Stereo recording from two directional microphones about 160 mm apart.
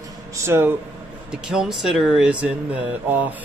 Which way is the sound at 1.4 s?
5° right (ahead or behind).